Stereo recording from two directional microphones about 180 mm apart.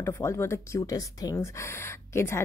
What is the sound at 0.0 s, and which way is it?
Speech, 15° left (ahead or behind).